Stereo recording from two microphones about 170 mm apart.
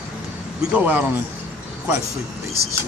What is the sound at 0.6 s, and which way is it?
Speech, 5° right (ahead or behind).